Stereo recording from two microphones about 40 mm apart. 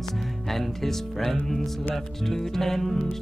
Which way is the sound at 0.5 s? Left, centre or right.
Centre.